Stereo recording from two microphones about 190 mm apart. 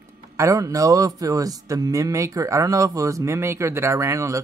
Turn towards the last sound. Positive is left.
turn(degrees=-15)  # may be behind; listen again after turning